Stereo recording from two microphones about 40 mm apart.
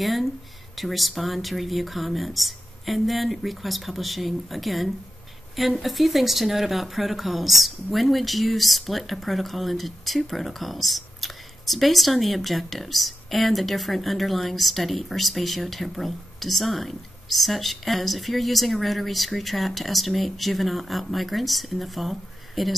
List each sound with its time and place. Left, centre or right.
0.0 s speech: centre